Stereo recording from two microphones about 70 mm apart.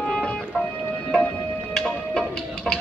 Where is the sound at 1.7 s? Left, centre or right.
Centre.